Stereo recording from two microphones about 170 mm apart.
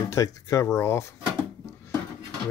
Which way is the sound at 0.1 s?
20° left (ahead or behind).